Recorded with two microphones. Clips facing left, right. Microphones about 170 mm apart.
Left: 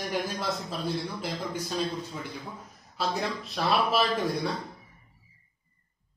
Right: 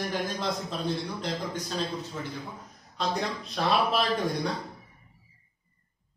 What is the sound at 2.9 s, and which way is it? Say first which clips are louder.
Speech: even; 5° left (ahead or behind).